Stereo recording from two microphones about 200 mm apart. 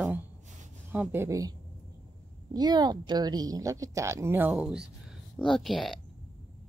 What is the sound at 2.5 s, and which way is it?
A woman's voice, 20° right (ahead or behind).